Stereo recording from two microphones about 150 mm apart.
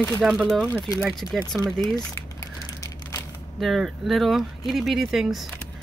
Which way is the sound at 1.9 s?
20° left (ahead or behind).